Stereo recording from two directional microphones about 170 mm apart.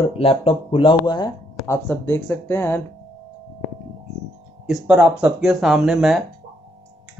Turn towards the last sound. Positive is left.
turn(degrees=0)  # may be behind; listen again after turning